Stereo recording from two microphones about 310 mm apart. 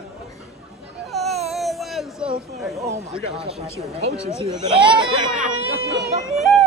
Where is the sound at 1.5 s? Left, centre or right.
Centre.